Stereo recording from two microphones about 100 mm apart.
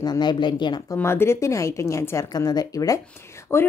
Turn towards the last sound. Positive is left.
turn(degrees=25)  # may be behind; listen again after turning